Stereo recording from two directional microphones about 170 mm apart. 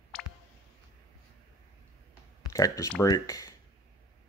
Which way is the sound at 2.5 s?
20° left (ahead or behind).